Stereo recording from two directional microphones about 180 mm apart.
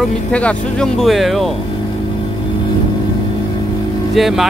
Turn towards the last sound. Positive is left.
turn(degrees=0)  # may be behind; listen again after turning